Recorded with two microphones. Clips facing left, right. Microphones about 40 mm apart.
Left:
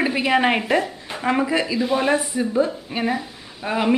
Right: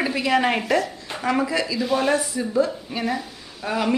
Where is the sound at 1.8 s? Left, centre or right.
Centre.